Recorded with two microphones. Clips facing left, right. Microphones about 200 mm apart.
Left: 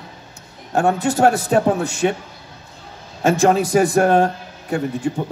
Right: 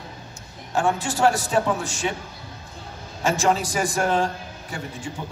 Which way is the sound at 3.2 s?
60° left (ahead or behind).